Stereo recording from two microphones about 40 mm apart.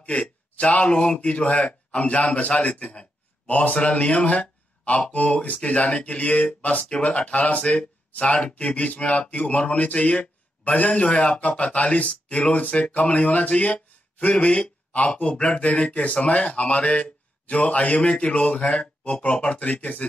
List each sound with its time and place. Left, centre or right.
0.0 s speech: left
2.8 s a sound: left
3.7 s speech: left
18.1 s speech: left